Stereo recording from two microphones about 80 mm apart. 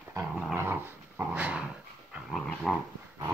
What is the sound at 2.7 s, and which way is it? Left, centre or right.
Dog, centre.